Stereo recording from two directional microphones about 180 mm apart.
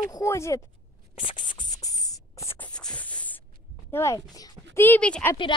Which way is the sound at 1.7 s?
20° left (ahead or behind).